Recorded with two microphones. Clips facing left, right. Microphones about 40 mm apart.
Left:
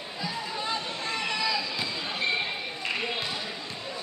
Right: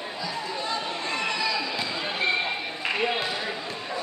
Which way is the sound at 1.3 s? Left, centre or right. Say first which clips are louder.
Even; centre.